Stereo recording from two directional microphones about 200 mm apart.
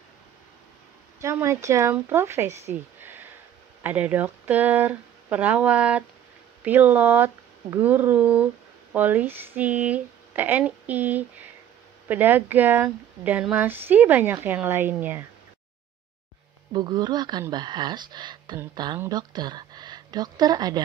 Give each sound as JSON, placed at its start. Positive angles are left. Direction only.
{"t": 1.2, "sound": "speech", "side_deg": -15}
{"t": 2.7, "sound": "a sound", "side_deg": -10}
{"t": 3.8, "sound": "speech", "side_deg": -5}
{"t": 16.7, "sound": "speech", "side_deg": -20}